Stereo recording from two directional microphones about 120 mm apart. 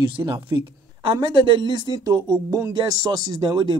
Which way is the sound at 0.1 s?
40° right (ahead or behind).